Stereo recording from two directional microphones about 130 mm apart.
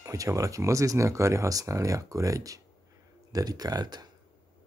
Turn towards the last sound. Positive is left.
turn(degrees=-30)  # may be behind; listen again after turning